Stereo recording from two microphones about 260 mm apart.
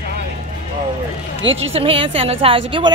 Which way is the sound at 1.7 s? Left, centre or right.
Right.